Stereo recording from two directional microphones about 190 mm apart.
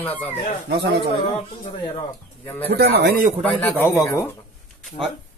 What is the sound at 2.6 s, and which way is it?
Speech, 60° right (ahead or behind).